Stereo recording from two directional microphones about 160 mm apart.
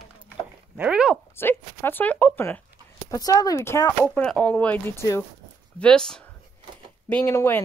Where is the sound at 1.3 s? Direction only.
15° left (ahead or behind).